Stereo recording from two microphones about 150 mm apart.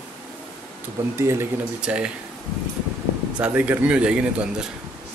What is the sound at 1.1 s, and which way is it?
Speech, 20° right (ahead or behind).